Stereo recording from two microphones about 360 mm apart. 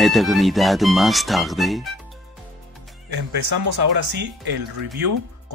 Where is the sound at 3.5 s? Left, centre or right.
Right.